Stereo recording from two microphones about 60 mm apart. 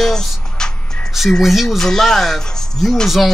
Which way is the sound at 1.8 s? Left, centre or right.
Centre.